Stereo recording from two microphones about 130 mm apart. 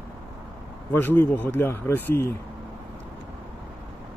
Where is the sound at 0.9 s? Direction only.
15° left (ahead or behind).